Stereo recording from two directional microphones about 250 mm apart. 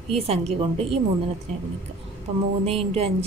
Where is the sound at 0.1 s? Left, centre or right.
Right.